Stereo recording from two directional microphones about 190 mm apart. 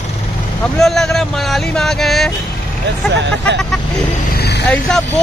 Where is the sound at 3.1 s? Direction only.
65° right (ahead or behind).